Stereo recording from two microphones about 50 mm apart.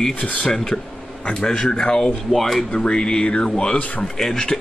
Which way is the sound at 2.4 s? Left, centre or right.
Centre.